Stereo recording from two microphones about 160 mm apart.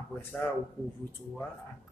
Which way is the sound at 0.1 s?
10° left (ahead or behind).